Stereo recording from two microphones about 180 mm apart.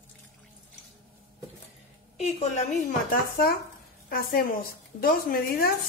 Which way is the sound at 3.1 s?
55° left (ahead or behind).